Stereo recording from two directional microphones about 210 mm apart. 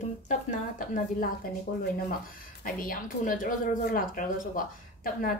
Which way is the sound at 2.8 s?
40° left (ahead or behind).